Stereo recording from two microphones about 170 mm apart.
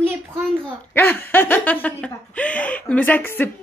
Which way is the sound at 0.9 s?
10° left (ahead or behind).